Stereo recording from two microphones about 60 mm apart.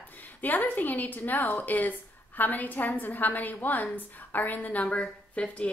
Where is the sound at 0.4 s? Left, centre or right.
Left.